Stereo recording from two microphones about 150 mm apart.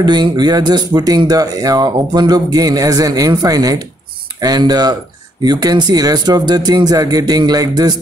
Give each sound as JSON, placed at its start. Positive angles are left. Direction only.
{"t": 0.0, "sound": "speech", "side_deg": -30}